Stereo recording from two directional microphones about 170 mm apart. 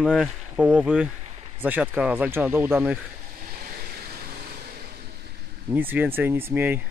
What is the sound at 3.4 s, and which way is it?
Vehicle, 55° right (ahead or behind).